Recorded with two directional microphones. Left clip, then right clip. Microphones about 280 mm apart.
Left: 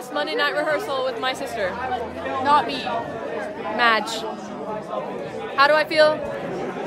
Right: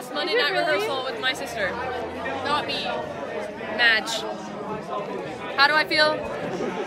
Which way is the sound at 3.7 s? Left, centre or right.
Left.